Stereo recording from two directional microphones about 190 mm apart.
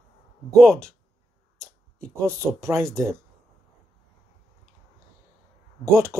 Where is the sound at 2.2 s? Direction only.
15° right (ahead or behind).